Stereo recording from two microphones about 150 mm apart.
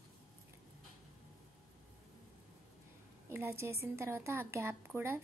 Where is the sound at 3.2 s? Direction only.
15° right (ahead or behind).